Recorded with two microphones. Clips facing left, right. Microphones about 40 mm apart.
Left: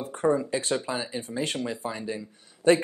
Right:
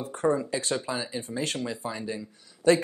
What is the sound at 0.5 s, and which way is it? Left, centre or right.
Speech, left.